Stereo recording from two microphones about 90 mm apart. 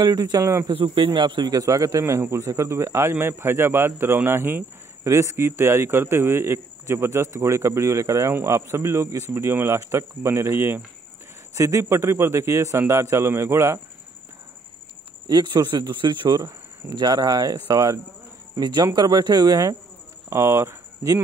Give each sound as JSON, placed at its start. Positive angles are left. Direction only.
{"t": 0.0, "sound": "speech", "side_deg": -50}
{"t": 0.7, "sound": "speech", "side_deg": -70}
{"t": 1.5, "sound": "a man's voice", "side_deg": -40}
{"t": 15.2, "sound": "speech", "side_deg": -55}
{"t": 18.6, "sound": "speech", "side_deg": -55}
{"t": 20.2, "sound": "speech", "side_deg": -30}